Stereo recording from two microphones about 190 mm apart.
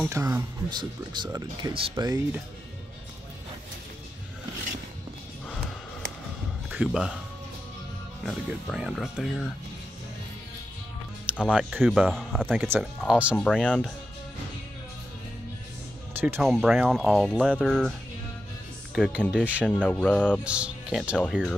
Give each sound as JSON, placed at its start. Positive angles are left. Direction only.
{"t": 0.0, "sound": "speech", "side_deg": -15}
{"t": 6.7, "sound": "speech", "side_deg": -5}
{"t": 8.3, "sound": "speech", "side_deg": 0}
{"t": 11.5, "sound": "speech", "side_deg": 0}
{"t": 12.4, "sound": "speech", "side_deg": -10}
{"t": 13.5, "sound": "speech", "side_deg": 10}
{"t": 16.3, "sound": "speech", "side_deg": 0}
{"t": 18.9, "sound": "speech", "side_deg": 0}
{"t": 19.7, "sound": "speech", "side_deg": 5}
{"t": 20.4, "sound": "speech", "side_deg": -5}